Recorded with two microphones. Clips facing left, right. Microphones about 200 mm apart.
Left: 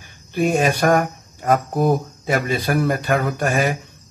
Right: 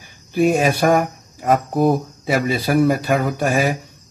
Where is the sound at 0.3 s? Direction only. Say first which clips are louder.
Right 2 dB; centre (ahead or behind).